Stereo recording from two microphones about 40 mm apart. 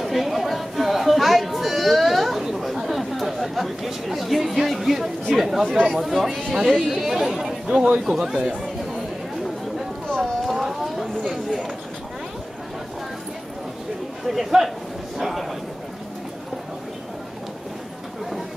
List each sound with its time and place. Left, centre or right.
0.0 s chatter: centre
5.3 s speech: centre
7.7 s speech: right
8.1 s speech: centre
10.1 s a sound: centre
14.2 s a man's voice: centre
15.1 s a sound: centre